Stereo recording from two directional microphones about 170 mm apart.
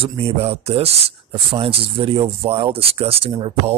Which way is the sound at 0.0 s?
35° right (ahead or behind).